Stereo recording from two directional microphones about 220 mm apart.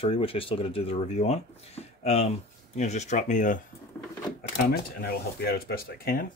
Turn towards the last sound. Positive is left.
turn(degrees=40)  # may be behind; listen again after turning